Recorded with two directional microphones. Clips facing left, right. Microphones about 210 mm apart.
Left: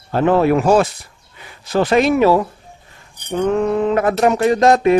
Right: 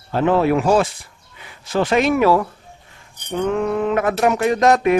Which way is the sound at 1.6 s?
40° left (ahead or behind).